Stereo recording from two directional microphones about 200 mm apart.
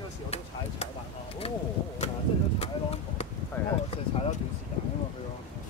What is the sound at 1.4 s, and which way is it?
Speech, 30° left (ahead or behind).